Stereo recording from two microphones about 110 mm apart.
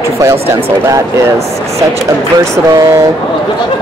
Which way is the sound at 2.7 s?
30° right (ahead or behind).